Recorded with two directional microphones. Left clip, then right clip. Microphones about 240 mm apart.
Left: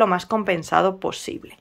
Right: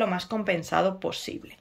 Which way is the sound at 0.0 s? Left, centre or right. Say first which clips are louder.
Left 8 dB; centre.